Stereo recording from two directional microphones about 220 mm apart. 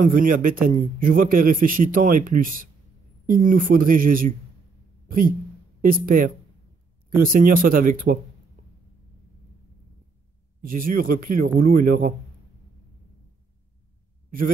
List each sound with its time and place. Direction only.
0.0 s a man's voice: 40° right (ahead or behind)
5.0 s a sound: 40° right (ahead or behind)
5.8 s a man's voice: 40° right (ahead or behind)
10.6 s a man's voice: 40° right (ahead or behind)